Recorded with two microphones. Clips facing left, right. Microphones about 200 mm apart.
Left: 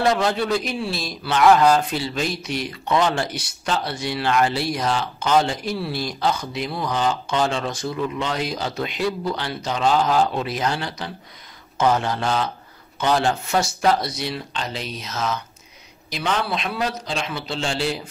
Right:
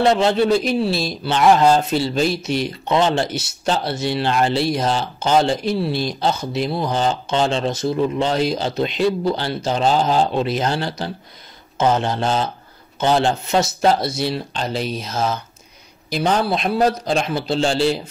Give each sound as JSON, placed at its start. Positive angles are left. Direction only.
{"t": 0.0, "sound": "speech", "side_deg": -25}